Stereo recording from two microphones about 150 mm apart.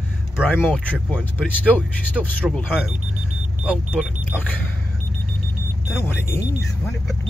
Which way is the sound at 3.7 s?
5° right (ahead or behind).